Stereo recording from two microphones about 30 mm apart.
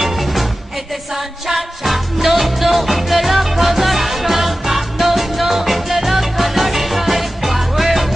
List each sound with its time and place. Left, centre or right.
0.0 s music: centre
1.5 s music: centre